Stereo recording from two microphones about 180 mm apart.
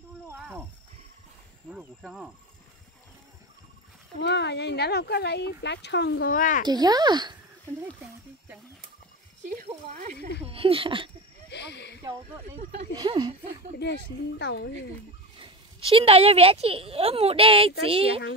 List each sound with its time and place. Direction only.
0.4 s a sound: 10° right (ahead or behind)
1.7 s speech: 5° right (ahead or behind)
4.2 s speech: 70° left (ahead or behind)
6.3 s speech: 45° left (ahead or behind)
6.6 s speech: 20° right (ahead or behind)
10.4 s speech: 30° right (ahead or behind)
11.5 s speech: 70° left (ahead or behind)
12.9 s speech: 25° right (ahead or behind)
14.4 s speech: 70° left (ahead or behind)
15.3 s speech: 30° right (ahead or behind)